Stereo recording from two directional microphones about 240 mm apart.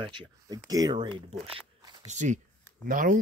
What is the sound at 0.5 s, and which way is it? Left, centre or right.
Speech, centre.